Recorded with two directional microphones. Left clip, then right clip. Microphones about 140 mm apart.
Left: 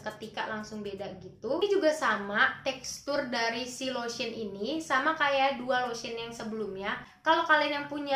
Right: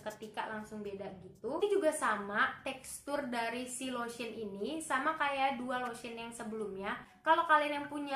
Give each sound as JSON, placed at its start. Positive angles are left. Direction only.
{"t": 0.0, "sound": "a woman's voice", "side_deg": 20}